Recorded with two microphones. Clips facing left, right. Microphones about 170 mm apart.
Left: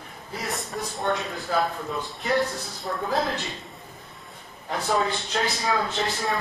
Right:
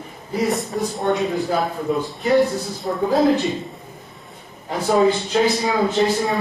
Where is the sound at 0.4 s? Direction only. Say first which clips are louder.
Right 11 dB; centre (ahead or behind).